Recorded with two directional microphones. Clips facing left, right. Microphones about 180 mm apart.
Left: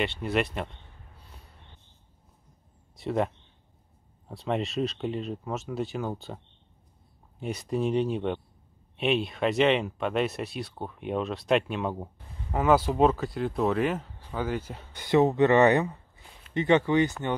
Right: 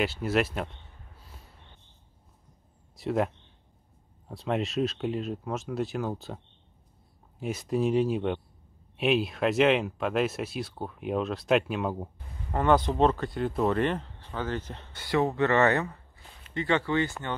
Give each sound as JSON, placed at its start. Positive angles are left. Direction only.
{"t": 0.0, "sound": "speech", "side_deg": -5}
{"t": 3.0, "sound": "speech", "side_deg": 0}